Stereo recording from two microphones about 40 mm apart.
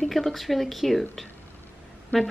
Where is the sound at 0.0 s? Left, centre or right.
Centre.